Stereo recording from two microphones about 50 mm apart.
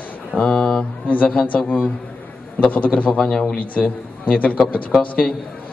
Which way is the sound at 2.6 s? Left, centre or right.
Left.